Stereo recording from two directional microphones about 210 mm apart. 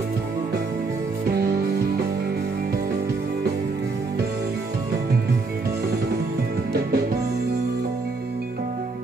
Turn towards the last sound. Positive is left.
turn(degrees=-50)  # may be behind; listen again after turning